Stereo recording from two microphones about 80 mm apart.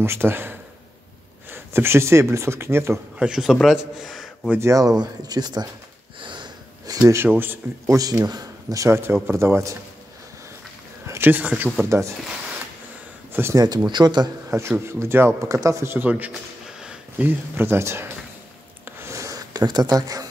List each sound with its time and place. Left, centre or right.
0.0 s speech: right
3.2 s a man's voice: centre
4.6 s speech: right
6.2 s wheeze: right
6.9 s a sound: right
7.8 s speech: right
11.1 s speech: right
11.9 s speech: right
13.3 s speech: right
13.8 s speech: right
14.5 s speech: right
17.2 s speech: right
18.9 s a sound: right
19.1 s a sound: right